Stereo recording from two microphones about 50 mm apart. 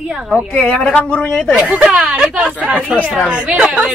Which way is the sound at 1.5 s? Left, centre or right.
Centre.